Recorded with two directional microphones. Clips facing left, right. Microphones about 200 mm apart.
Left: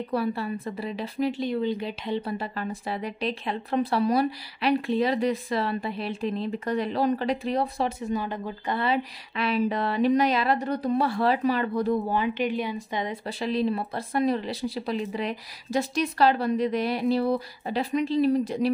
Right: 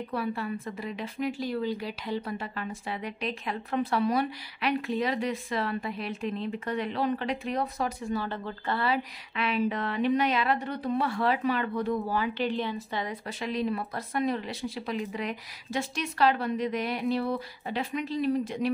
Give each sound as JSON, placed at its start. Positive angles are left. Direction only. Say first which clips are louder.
{"t": 0.1, "sound": "a woman's voice", "louder": "left 4 dB", "side_deg": 35}
{"t": 1.4, "sound": "a woman's voice", "louder": "left 4 dB", "side_deg": 20}
{"t": 2.3, "sound": "a woman's voice", "louder": "left 4 dB", "side_deg": 35}
{"t": 8.0, "sound": "a woman's voice", "louder": "left 3 dB", "side_deg": 15}
{"t": 9.3, "sound": "a woman's voice", "louder": "left 3 dB", "side_deg": 35}
{"t": 12.1, "sound": "a woman's voice", "louder": "left 3 dB", "side_deg": 20}